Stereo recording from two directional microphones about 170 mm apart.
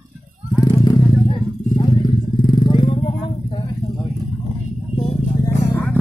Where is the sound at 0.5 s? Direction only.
25° left (ahead or behind).